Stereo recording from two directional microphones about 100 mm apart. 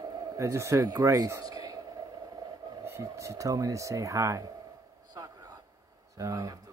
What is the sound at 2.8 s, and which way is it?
Speech, 30° right (ahead or behind).